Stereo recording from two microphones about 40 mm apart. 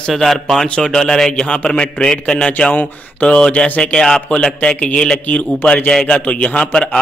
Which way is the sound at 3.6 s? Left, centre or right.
Left.